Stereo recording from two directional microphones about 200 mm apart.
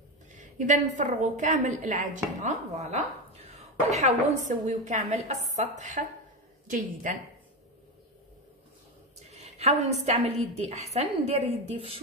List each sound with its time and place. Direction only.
0.3 s a woman's voice: 40° right (ahead or behind)
9.3 s a woman's voice: 35° right (ahead or behind)